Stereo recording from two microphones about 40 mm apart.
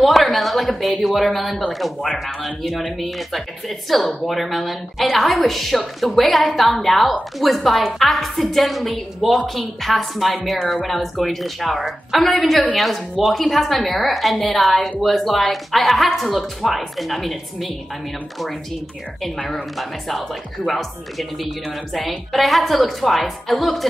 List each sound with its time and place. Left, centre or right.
0.0 s a woman's voice: centre
19.4 s a woman's voice: centre